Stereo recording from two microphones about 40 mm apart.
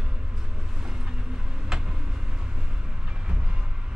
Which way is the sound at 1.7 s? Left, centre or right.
Centre.